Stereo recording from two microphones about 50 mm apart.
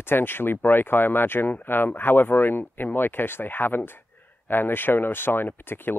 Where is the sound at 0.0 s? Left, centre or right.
Left.